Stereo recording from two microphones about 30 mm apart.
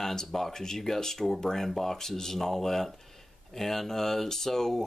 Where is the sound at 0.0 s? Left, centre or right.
Centre.